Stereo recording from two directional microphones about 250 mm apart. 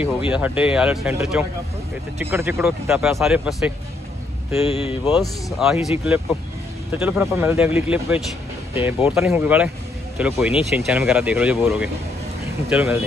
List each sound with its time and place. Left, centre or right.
0.3 s speech: centre
4.6 s speech: left
5.1 s speech: centre